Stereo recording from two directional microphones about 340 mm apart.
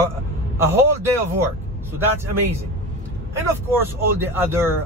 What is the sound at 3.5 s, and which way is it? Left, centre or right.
Speech, centre.